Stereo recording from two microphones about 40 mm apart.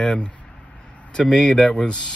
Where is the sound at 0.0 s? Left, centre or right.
Left.